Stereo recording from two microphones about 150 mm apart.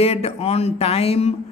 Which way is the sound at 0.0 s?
40° left (ahead or behind).